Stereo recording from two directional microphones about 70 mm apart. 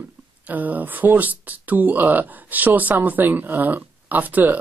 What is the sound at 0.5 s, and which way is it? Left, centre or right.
Speech, right.